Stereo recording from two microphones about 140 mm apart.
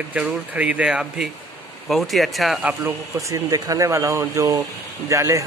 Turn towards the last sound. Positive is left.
turn(degrees=-20)  # may be behind; listen again after turning